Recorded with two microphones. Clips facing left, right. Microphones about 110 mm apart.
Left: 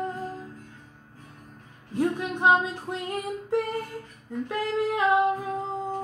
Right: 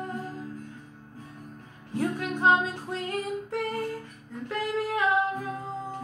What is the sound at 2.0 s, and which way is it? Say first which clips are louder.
Female singing: left 2 dB; 25° left (ahead or behind).